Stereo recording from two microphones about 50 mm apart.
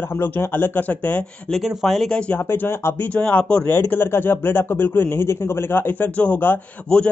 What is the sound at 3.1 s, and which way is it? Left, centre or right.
Speech, left.